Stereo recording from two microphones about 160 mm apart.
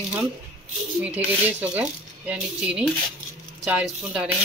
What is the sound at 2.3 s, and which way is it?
Speech, 5° right (ahead or behind).